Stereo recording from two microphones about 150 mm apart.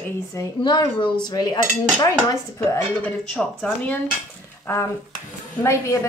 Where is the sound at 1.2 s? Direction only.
25° left (ahead or behind).